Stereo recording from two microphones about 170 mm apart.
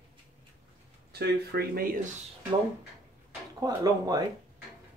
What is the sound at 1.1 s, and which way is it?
Speech, 70° right (ahead or behind).